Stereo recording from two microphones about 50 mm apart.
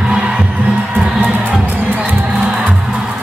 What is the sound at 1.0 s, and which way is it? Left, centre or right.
Music, right.